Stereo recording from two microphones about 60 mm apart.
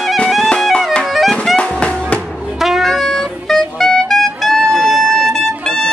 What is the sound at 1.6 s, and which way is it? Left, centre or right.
Music, centre.